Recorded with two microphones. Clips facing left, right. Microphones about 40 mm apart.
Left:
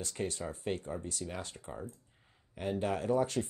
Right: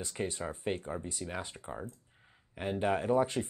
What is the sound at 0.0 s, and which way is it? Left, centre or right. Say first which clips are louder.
Speech: right 1 dB; right.